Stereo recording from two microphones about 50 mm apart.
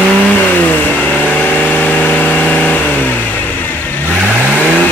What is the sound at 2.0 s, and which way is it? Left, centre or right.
Engine, left.